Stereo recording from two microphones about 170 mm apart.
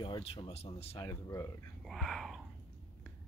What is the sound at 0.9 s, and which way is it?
Speech, 20° left (ahead or behind).